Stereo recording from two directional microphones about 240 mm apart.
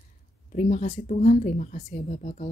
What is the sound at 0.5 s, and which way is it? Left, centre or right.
Speech, left.